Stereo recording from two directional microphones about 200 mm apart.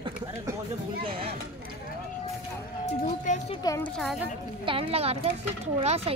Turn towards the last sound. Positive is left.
turn(degrees=-30)  # may be behind; listen again after turning